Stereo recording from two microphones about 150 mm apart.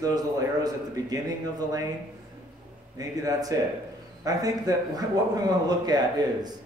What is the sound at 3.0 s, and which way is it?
A man's voice, 25° right (ahead or behind).